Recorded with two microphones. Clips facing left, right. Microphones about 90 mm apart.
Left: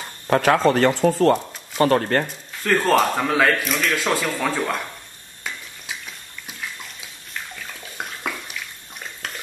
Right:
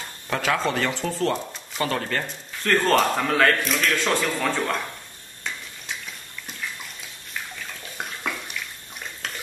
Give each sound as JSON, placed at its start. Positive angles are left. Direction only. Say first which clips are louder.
{"t": 0.3, "sound": "speech", "louder": "left 7 dB", "side_deg": 45}
{"t": 2.6, "sound": "a man's voice", "louder": "left 2 dB", "side_deg": 5}
{"t": 7.5, "sound": "bathtub", "louder": "left 1 dB", "side_deg": 0}
{"t": 9.2, "sound": "frying", "louder": "left 1 dB", "side_deg": 0}